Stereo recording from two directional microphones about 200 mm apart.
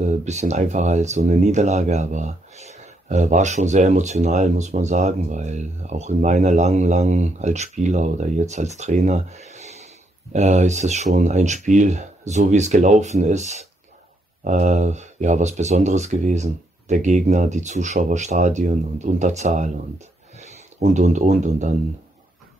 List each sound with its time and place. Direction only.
0.2 s speech: 35° right (ahead or behind)